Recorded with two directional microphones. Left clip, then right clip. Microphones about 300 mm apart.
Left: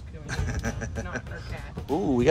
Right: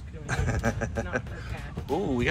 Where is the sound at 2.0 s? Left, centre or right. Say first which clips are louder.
Left 5 dB; centre.